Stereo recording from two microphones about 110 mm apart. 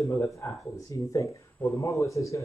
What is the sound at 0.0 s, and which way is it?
Speech, 30° left (ahead or behind).